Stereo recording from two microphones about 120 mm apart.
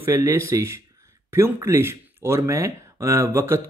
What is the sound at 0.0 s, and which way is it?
Speech, 20° right (ahead or behind).